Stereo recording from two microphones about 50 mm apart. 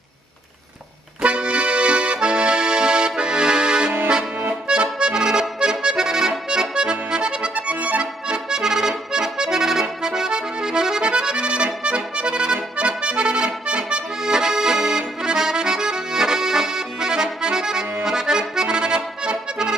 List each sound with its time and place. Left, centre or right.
1.2 s accordion: right
7.5 s music: right
8.3 s accordion: centre